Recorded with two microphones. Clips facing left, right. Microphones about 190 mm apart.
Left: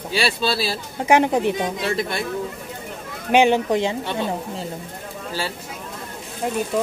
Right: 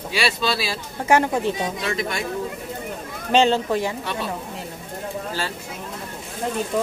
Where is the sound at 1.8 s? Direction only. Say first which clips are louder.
Left 2 dB; 35° left (ahead or behind).